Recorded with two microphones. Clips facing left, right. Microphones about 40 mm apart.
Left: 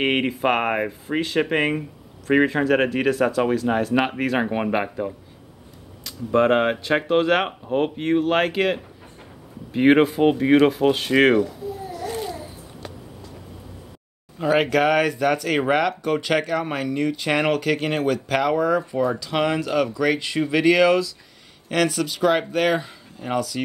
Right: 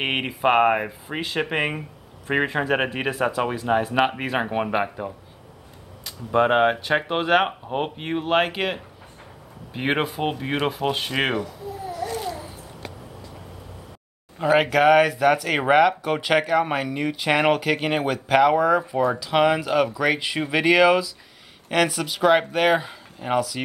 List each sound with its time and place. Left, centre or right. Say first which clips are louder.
0.0 s speech: left 2 dB; centre
12.1 s babbling: left 4 dB; centre
14.4 s speech: right 1 dB; centre